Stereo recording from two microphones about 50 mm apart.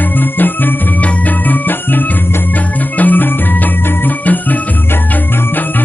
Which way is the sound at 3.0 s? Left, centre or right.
Left.